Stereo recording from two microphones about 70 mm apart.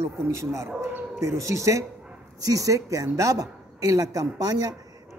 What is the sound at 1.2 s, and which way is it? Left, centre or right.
A man's voice, right.